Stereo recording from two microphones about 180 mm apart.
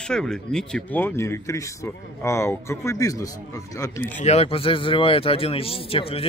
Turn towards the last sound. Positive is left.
turn(degrees=30)  # may be behind; listen again after turning